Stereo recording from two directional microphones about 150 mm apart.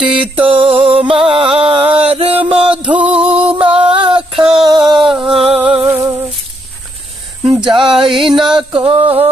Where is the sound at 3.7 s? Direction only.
35° right (ahead or behind).